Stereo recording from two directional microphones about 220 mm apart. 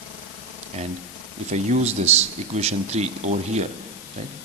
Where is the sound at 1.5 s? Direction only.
30° right (ahead or behind).